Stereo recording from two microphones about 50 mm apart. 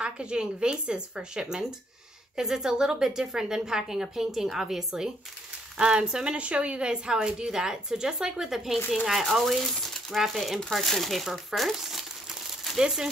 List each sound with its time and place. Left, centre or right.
0.0 s a woman's voice: centre
12.7 s a woman's voice: centre